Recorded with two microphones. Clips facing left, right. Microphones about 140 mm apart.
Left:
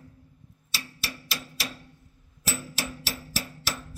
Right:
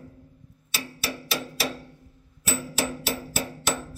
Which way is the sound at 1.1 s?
65° right (ahead or behind).